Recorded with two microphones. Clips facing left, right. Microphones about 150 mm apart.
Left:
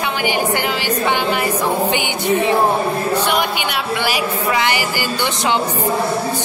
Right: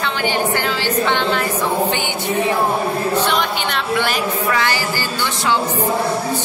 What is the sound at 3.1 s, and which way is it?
A man's voice, 10° left (ahead or behind).